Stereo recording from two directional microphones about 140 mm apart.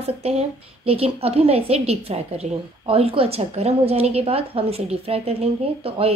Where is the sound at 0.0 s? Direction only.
50° right (ahead or behind).